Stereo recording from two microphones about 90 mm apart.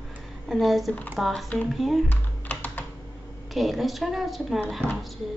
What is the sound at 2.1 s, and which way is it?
Typing, 20° left (ahead or behind).